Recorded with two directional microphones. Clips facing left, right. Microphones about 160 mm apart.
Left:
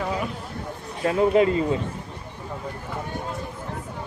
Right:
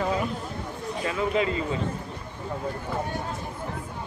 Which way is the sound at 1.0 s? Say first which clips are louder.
Left 7 dB; 45° left (ahead or behind).